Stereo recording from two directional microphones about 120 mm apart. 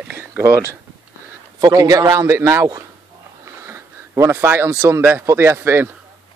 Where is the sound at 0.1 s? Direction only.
20° right (ahead or behind).